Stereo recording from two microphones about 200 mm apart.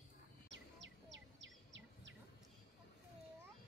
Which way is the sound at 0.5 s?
65° right (ahead or behind).